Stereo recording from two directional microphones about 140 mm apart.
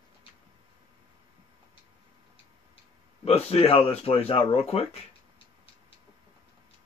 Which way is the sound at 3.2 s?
45° left (ahead or behind).